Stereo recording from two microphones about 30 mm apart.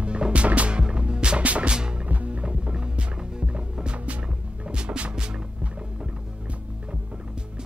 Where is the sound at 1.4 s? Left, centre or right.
Right.